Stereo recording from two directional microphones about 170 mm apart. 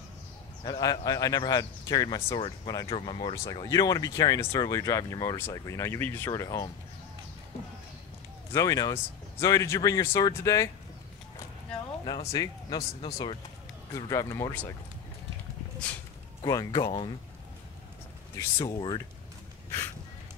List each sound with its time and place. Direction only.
0.7 s speech: 20° left (ahead or behind)
3.3 s speech: 20° left (ahead or behind)
8.5 s speech: 20° left (ahead or behind)
12.3 s speech: 20° left (ahead or behind)
13.9 s speech: 20° left (ahead or behind)
16.4 s speech: 25° left (ahead or behind)
18.6 s speech: 25° left (ahead or behind)